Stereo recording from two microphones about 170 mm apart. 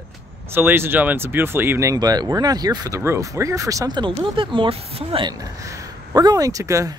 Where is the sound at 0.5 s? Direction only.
15° right (ahead or behind).